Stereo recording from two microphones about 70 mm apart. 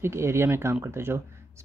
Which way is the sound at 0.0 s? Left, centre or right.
Right.